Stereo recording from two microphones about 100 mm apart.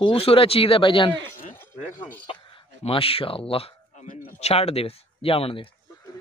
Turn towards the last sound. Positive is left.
turn(degrees=70)  # may be behind; listen again after turning